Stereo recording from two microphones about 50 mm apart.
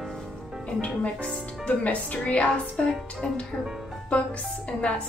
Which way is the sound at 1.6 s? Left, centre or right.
Left.